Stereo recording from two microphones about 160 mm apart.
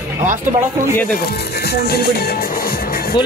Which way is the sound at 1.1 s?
70° left (ahead or behind).